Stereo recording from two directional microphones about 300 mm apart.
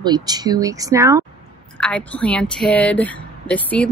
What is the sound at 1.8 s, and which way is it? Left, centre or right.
A woman's voice, centre.